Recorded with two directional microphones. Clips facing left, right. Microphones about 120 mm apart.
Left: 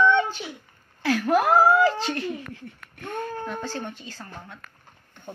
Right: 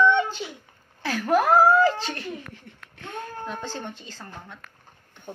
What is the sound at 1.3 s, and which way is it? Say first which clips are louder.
Speech: right 1 dB; 10° left (ahead or behind).